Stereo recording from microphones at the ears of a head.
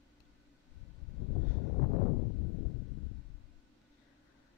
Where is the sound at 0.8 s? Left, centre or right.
Left.